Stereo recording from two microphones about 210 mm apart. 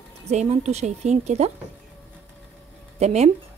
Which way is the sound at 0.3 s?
30° right (ahead or behind).